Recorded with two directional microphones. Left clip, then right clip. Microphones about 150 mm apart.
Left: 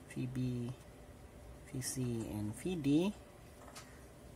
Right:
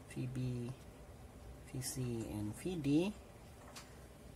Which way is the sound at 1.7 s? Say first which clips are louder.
Left 3 dB; 20° left (ahead or behind).